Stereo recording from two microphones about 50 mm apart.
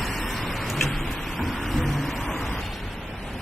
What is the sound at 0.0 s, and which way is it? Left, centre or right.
Vehicle, centre.